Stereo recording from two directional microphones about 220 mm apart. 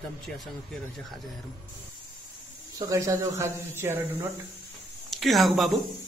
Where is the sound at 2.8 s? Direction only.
15° right (ahead or behind).